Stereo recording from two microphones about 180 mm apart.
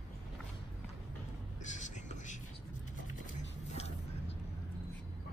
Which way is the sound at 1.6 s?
40° left (ahead or behind).